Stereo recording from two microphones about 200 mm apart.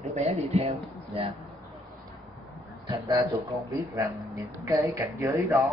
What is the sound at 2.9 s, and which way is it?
Speech, 15° right (ahead or behind).